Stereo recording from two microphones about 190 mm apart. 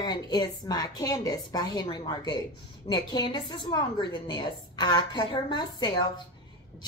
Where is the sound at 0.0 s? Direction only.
20° left (ahead or behind).